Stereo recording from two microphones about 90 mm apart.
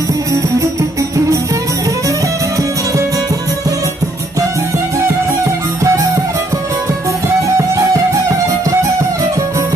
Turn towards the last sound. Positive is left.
turn(degrees=-35)  # may be behind; listen again after turning